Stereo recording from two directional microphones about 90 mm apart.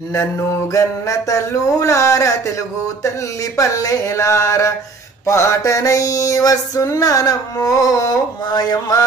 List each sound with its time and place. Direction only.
0.1 s music: 35° left (ahead or behind)
3.5 s music: 40° left (ahead or behind)